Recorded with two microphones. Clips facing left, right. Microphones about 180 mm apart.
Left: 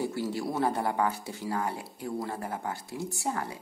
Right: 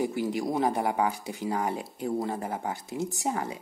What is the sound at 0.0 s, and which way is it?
Speech, 15° right (ahead or behind).